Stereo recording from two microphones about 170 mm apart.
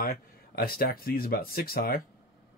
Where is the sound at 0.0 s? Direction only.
60° left (ahead or behind).